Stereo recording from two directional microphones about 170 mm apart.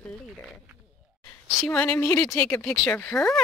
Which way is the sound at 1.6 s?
10° left (ahead or behind).